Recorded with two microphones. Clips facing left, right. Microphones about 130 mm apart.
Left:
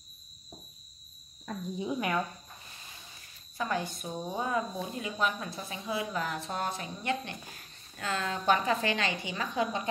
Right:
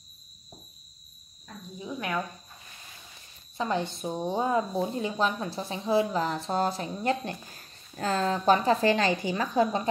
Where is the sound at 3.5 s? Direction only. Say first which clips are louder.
Right 4 dB; 25° right (ahead or behind).